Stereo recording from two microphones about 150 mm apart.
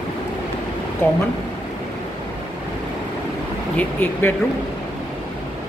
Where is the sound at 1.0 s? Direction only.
10° left (ahead or behind).